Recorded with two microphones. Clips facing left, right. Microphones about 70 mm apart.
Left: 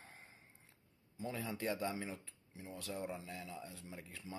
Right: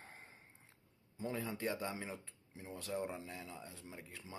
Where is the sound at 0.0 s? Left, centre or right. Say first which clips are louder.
Right 2 dB; right.